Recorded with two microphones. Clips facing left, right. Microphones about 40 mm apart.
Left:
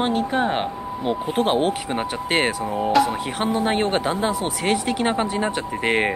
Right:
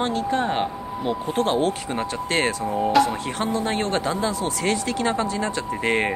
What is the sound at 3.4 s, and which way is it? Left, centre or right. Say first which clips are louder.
Speech: left 4 dB; left.